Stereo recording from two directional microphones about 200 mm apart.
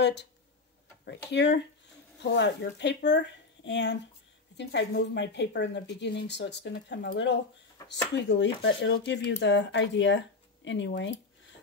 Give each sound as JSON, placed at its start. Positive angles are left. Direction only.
{"t": 0.0, "sound": "speech", "side_deg": 60}